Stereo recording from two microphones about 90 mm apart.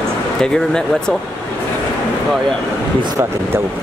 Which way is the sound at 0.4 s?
5° left (ahead or behind).